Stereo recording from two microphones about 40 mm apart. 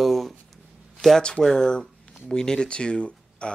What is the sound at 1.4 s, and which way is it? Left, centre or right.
Speech, centre.